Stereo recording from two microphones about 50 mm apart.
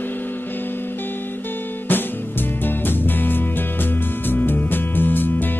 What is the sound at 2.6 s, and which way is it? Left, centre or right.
Music, left.